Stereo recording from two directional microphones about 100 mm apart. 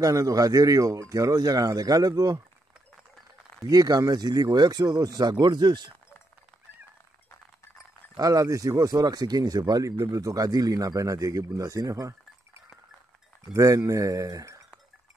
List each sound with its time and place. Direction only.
0.0 s speech: 35° right (ahead or behind)
3.6 s speech: 40° right (ahead or behind)
8.2 s speech: 35° right (ahead or behind)
13.5 s speech: 35° right (ahead or behind)